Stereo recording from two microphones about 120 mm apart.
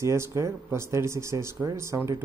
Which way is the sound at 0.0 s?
25° right (ahead or behind).